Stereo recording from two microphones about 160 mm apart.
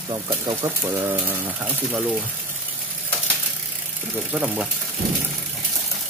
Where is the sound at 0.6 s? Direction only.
20° right (ahead or behind).